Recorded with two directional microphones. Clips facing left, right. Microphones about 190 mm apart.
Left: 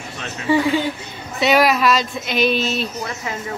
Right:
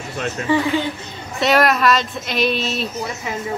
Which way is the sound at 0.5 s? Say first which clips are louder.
Left 2 dB; 10° left (ahead or behind).